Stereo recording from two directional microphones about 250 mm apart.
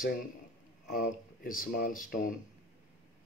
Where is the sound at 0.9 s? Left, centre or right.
Left.